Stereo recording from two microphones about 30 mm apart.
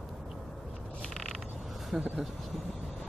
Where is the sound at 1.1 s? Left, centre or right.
Centre.